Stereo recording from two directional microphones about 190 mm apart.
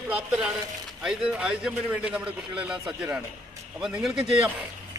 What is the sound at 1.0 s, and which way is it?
A man's voice, 5° right (ahead or behind).